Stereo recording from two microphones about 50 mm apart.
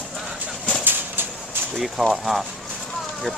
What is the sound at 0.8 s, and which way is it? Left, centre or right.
Bird, right.